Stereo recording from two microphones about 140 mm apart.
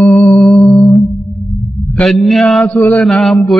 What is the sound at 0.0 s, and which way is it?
Music, 15° left (ahead or behind).